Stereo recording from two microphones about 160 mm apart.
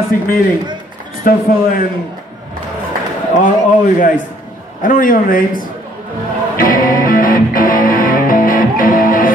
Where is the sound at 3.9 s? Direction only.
55° left (ahead or behind).